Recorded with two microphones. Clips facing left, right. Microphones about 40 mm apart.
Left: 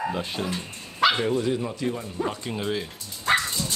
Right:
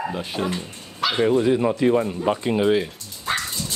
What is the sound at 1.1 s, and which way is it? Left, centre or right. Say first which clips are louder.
Speech: right 6 dB; centre.